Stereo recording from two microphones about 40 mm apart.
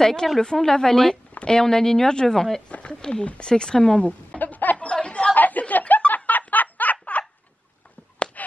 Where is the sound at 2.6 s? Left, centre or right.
Left.